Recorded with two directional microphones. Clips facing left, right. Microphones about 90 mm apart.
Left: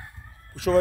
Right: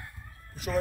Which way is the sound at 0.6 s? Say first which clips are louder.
Left 11 dB; 90° left.